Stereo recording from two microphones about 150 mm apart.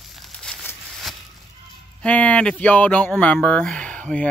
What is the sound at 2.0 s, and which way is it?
Speech, 10° left (ahead or behind).